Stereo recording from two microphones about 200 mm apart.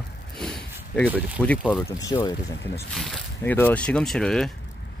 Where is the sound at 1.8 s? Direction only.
20° left (ahead or behind).